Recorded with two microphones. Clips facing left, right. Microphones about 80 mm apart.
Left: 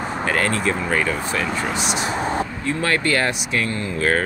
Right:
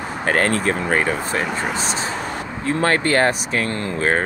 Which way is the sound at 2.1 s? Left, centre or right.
Left.